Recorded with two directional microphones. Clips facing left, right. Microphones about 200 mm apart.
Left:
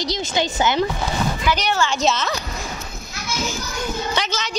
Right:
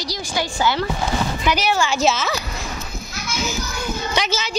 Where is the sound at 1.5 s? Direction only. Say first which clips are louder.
Right 2 dB; 10° right (ahead or behind).